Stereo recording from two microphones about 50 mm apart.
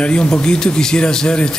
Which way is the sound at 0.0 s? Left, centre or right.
Left.